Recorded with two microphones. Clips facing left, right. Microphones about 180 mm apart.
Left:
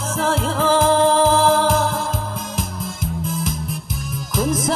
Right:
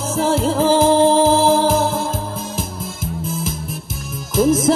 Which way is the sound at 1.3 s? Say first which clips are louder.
Right 2 dB; 5° right (ahead or behind).